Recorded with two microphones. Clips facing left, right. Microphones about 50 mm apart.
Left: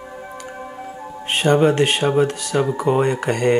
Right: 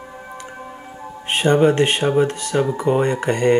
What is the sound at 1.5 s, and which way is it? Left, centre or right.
Speech, centre.